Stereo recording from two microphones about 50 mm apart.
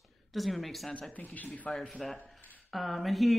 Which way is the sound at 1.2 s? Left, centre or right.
Left.